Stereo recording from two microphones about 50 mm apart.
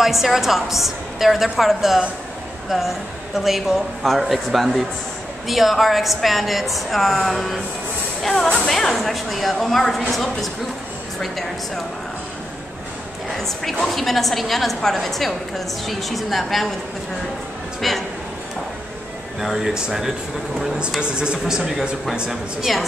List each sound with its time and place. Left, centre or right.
0.0 s a woman's voice: centre
13.4 s a woman's voice: centre
17.8 s a woman's voice: centre
19.4 s speech: centre
21.0 s speech: centre
22.3 s a woman's voice: centre